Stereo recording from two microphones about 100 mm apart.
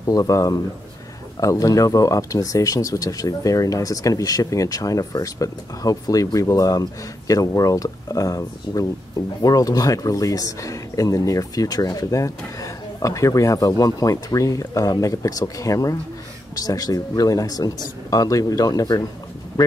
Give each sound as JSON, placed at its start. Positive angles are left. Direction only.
{"t": 0.0, "sound": "speech", "side_deg": 35}